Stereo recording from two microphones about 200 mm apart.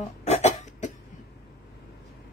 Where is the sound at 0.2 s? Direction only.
35° left (ahead or behind).